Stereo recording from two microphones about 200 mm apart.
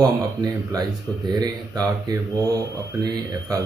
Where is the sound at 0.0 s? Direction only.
20° right (ahead or behind).